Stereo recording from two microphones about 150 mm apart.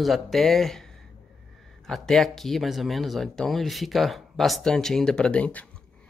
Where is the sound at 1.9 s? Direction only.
Centre (ahead or behind).